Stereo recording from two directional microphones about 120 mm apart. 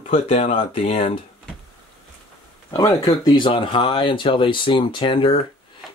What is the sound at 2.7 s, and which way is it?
Speech, 30° left (ahead or behind).